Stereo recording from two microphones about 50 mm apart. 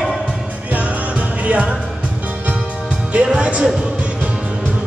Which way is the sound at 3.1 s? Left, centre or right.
Right.